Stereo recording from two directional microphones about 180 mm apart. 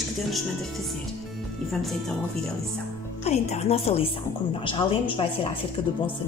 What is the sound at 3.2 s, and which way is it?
A woman's voice, 35° left (ahead or behind).